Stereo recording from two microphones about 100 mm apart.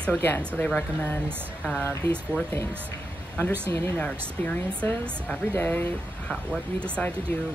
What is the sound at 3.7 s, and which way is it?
Speech, 15° left (ahead or behind).